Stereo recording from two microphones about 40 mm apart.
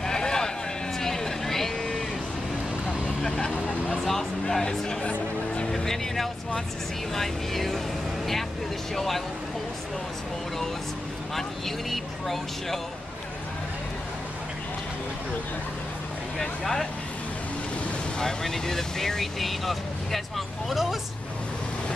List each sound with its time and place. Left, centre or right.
0.0 s a sound: centre
0.9 s vehicle: centre
3.2 s vehicle: centre
4.0 s a sound: centre
5.7 s music: centre
7.2 s speech: centre
8.9 s speech: centre
11.9 s speech: centre
16.3 s speech: centre
18.2 s speech: centre